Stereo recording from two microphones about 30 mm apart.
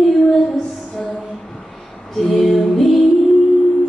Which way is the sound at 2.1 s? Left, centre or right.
Centre.